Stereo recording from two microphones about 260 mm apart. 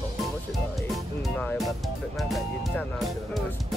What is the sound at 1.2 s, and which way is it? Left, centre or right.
Speech, centre.